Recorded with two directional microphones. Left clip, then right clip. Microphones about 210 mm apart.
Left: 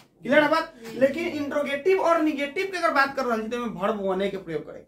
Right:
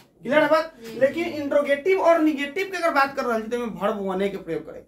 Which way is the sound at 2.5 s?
10° right (ahead or behind).